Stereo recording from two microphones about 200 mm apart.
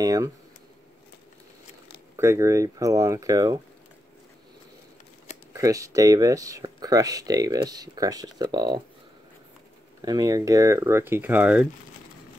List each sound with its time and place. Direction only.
0.0 s speech: 15° right (ahead or behind)
2.1 s speech: 15° right (ahead or behind)
5.5 s speech: 15° right (ahead or behind)
10.0 s speech: 15° right (ahead or behind)